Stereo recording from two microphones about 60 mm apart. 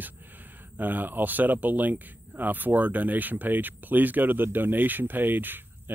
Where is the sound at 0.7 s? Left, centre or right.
Right.